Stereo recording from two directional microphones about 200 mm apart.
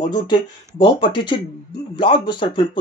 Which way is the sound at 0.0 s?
20° left (ahead or behind).